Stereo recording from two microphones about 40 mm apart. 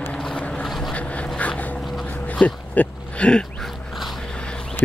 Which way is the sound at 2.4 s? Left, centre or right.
Left.